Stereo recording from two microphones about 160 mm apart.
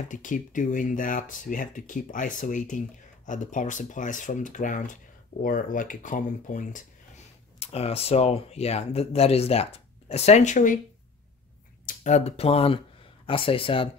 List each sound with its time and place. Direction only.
0.1 s speech: 55° left (ahead or behind)
7.5 s speech: 40° left (ahead or behind)
11.8 s speech: 45° left (ahead or behind)